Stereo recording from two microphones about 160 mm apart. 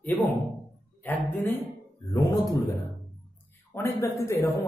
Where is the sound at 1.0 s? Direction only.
10° left (ahead or behind).